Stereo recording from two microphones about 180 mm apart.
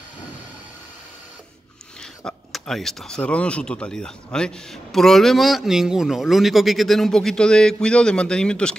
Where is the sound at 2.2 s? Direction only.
Centre (ahead or behind).